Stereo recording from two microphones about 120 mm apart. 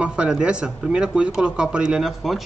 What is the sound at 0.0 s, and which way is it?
Speech, 10° right (ahead or behind).